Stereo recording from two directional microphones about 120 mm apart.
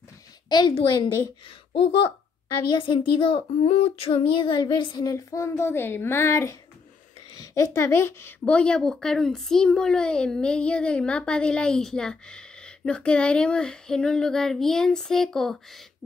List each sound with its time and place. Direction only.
0.5 s a woman's voice: 35° left (ahead or behind)
2.8 s female singing: 45° left (ahead or behind)
5.0 s speech: 25° left (ahead or behind)
7.5 s speech: 25° left (ahead or behind)
8.5 s speech: 10° left (ahead or behind)